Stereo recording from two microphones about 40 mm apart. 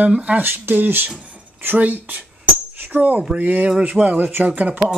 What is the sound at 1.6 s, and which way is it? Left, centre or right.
Speech, right.